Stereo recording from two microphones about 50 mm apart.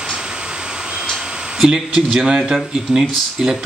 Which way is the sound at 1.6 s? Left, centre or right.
Centre.